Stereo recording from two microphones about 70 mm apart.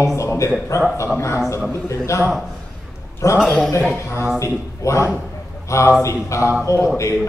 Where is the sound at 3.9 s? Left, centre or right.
Left.